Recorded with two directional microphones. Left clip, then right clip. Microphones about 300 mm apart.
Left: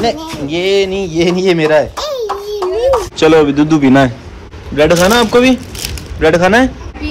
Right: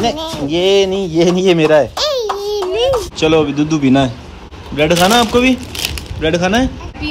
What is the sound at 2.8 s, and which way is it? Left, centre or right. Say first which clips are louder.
Speech: left 6 dB; centre.